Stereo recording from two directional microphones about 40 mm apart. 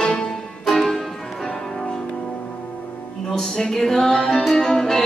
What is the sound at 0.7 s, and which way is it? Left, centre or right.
Music, centre.